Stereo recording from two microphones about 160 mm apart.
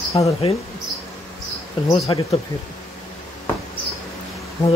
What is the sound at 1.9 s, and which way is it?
Speech, 35° left (ahead or behind).